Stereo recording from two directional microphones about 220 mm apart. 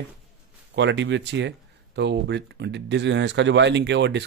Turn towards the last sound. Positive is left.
turn(degrees=-50)  # may be behind; listen again after turning